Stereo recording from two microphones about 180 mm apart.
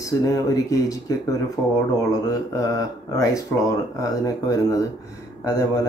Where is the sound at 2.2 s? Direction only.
20° left (ahead or behind).